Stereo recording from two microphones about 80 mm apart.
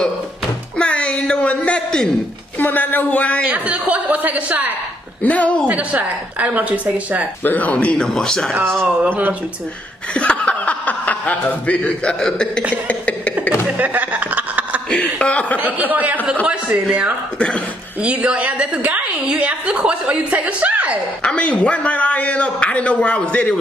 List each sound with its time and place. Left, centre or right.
0.7 s a sound: centre
2.6 s speech: left
3.4 s a woman's voice: centre
5.2 s speech: centre
5.7 s a woman's voice: centre
7.4 s a man's voice: centre
8.8 s a woman's voice: right
10.1 s speech: centre
12.8 s a sound: centre
13.7 s a sound: right
15.1 s speech: centre
15.6 s a woman's voice: right
18.0 s a woman's voice: centre
21.2 s a man's voice: centre